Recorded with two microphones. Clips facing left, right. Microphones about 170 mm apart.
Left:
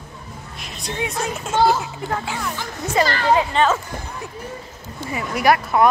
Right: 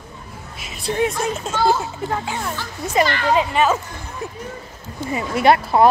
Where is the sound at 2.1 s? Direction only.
20° right (ahead or behind).